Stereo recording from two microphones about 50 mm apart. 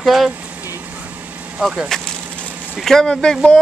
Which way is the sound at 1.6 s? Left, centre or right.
Centre.